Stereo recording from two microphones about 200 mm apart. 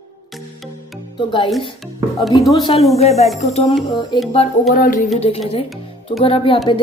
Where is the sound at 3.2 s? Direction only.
Centre (ahead or behind).